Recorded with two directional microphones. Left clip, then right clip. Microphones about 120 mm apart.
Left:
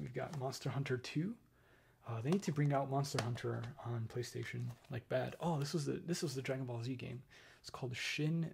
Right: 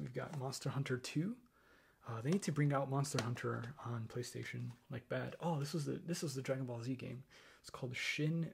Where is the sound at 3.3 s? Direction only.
90° right.